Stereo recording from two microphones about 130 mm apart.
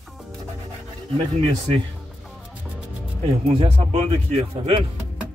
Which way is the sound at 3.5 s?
45° right (ahead or behind).